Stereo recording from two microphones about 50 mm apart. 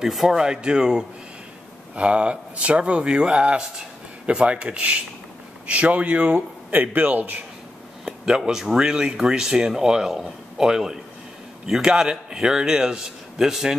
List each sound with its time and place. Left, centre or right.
0.0 s speech: centre
0.4 s speech: centre
6.7 s a man's voice: right
8.4 s speech: centre